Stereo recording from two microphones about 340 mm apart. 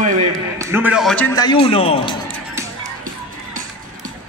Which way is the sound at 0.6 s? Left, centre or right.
Centre.